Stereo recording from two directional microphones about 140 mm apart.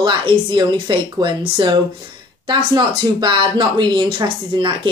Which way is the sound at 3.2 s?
30° right (ahead or behind).